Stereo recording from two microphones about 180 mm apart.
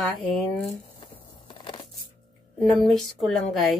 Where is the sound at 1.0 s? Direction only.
25° left (ahead or behind).